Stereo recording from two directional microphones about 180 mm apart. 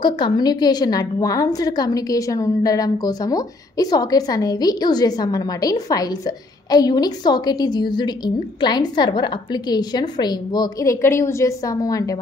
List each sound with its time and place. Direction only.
0.0 s a woman's voice: 25° left (ahead or behind)